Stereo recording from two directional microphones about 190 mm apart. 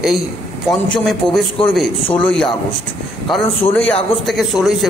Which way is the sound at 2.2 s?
5° left (ahead or behind).